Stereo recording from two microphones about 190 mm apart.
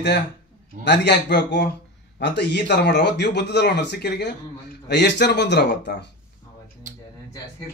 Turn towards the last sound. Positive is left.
turn(degrees=65)  # may be behind; listen again after turning